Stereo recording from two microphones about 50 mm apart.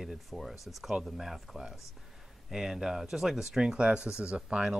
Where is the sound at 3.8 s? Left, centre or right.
Right.